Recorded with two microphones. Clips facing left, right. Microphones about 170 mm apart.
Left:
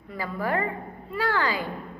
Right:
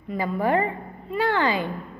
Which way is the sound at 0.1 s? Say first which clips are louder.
Right 5 dB; 20° right (ahead or behind).